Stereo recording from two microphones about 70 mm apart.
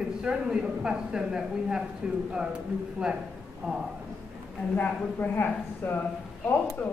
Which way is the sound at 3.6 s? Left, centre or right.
Centre.